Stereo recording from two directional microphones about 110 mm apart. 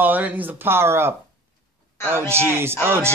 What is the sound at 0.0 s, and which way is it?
A man's voice, 15° right (ahead or behind).